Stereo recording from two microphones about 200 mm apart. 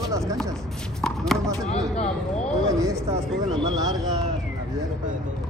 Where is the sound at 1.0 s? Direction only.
Centre (ahead or behind).